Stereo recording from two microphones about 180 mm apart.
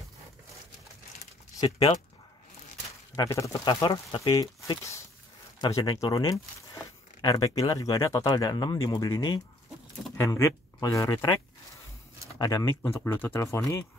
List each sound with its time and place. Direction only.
3.2 s speech: 15° left (ahead or behind)
5.6 s speech: 20° left (ahead or behind)
12.4 s speech: 20° left (ahead or behind)